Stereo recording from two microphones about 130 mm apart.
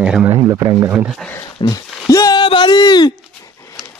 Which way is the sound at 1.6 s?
25° left (ahead or behind).